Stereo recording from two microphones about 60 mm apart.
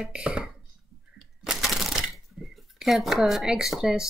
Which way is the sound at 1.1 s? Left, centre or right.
Centre.